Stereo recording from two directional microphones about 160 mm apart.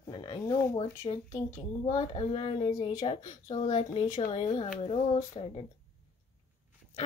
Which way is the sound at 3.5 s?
40° left (ahead or behind).